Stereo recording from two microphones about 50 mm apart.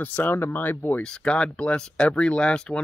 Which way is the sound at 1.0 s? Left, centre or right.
Centre.